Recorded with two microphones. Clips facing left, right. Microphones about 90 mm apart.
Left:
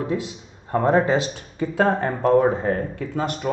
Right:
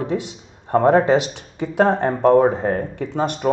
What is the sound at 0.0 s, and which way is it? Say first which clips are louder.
Speech: right 2 dB; 25° right (ahead or behind).